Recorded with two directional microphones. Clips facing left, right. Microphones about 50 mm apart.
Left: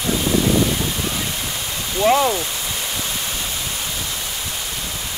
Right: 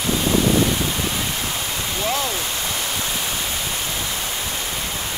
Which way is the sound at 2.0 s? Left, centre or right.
Left.